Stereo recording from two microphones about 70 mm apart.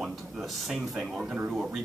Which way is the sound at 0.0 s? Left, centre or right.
Centre.